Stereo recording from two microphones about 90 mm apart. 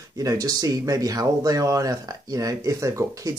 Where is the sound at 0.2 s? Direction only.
40° right (ahead or behind).